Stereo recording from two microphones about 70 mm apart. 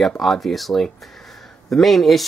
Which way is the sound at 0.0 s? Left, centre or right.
Centre.